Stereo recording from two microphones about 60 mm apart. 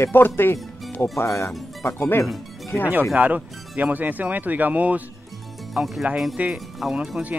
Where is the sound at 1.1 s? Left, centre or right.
Left.